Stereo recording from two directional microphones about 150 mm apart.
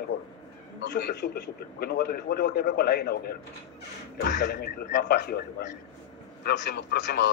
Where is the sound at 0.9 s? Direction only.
90° left.